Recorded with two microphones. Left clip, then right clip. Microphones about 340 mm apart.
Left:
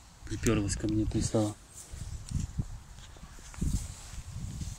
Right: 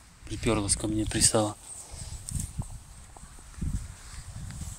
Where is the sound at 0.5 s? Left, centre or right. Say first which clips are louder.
Right 2 dB; right.